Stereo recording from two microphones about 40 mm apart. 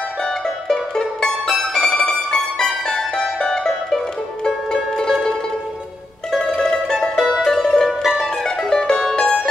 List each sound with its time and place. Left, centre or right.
0.2 s mandolin: centre
4.6 s music: centre
6.3 s mandolin: centre
7.2 s music: centre